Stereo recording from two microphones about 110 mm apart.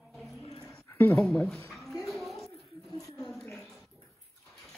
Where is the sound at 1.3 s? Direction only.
5° left (ahead or behind).